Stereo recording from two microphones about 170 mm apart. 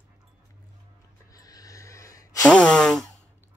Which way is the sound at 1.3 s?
20° left (ahead or behind).